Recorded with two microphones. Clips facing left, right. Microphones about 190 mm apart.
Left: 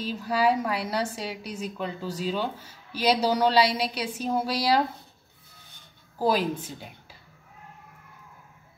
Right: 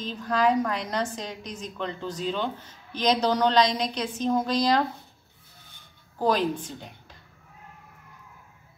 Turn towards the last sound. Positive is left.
turn(degrees=5)  # may be behind; listen again after turning